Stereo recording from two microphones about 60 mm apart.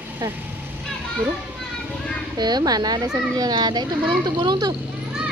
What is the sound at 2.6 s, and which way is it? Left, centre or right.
A child's voice, right.